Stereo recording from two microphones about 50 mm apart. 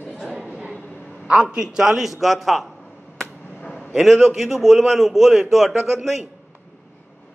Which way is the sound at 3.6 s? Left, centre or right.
Left.